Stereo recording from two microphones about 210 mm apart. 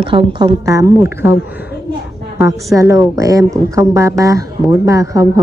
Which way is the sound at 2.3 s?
15° right (ahead or behind).